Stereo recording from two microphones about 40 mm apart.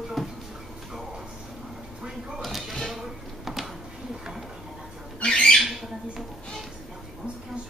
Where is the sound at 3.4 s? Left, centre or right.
Centre.